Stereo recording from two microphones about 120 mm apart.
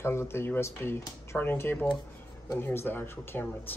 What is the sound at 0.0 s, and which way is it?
Speech, 20° left (ahead or behind).